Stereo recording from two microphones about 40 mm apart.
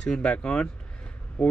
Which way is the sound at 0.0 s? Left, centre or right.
Left.